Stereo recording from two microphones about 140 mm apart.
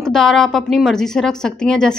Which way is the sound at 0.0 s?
5° left (ahead or behind).